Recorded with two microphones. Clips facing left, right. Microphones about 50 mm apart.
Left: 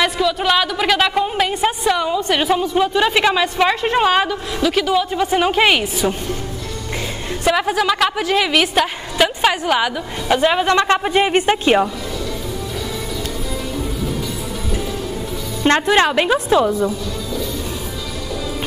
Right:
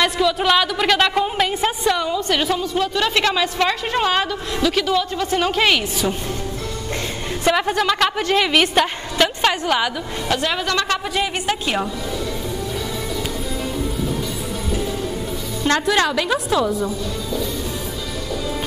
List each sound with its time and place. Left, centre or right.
0.0 s a woman's voice: centre
7.4 s a woman's voice: centre
10.2 s a woman's voice: centre
15.6 s a woman's voice: left